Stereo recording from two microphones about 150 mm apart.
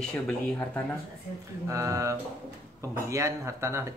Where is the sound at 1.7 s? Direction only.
20° right (ahead or behind).